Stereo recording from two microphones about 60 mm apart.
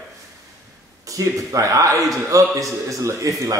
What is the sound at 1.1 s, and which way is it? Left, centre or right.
Speech, right.